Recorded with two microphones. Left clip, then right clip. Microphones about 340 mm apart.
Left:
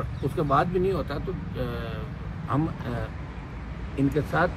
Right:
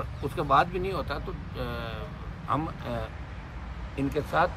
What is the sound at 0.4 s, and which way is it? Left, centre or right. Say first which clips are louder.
Speech: even; centre.